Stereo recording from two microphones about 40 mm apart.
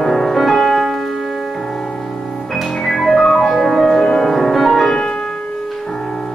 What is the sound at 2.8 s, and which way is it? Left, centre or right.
Music, centre.